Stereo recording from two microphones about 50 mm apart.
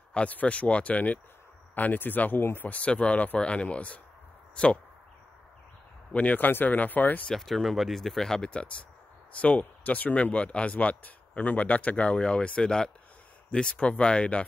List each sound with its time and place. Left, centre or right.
0.1 s speech: left
2.6 s speech: left
6.1 s speech: left
7.2 s speech: centre
8.5 s speech: left